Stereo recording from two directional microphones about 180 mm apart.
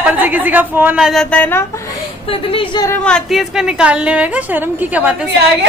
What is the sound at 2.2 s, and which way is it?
Speech, 30° left (ahead or behind).